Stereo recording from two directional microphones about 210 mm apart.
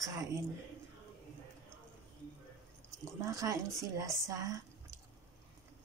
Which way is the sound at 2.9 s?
15° right (ahead or behind).